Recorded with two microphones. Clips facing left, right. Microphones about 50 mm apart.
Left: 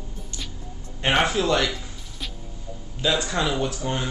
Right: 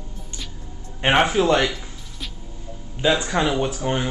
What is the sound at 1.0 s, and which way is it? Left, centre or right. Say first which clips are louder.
Speech: right 4 dB; right.